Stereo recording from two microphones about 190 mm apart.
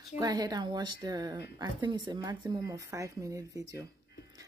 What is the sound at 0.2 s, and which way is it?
A woman's voice, 20° right (ahead or behind).